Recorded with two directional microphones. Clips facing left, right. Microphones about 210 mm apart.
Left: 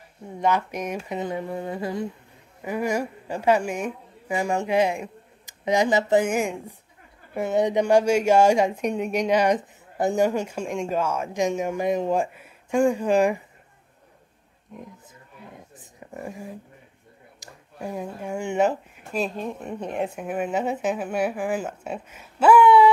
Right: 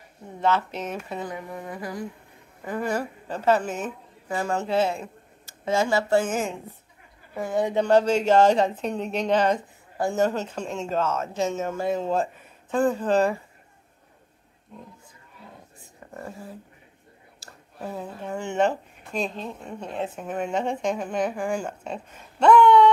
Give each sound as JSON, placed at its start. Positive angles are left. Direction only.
{"t": 0.4, "sound": "speech", "side_deg": 15}
{"t": 2.6, "sound": "a woman's voice", "side_deg": 15}
{"t": 16.1, "sound": "speech", "side_deg": 15}